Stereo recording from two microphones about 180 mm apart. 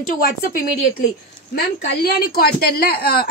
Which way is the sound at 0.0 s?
50° left (ahead or behind).